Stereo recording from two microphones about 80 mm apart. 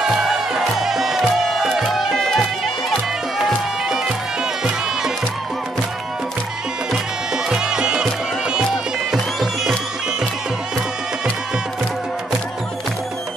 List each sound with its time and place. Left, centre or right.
0.0 s music: centre
7.4 s music: centre